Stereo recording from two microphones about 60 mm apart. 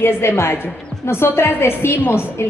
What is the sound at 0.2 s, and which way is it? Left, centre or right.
A woman's voice, left.